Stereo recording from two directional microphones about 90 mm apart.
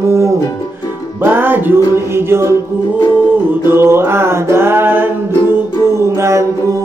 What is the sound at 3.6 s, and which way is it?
Music, 30° right (ahead or behind).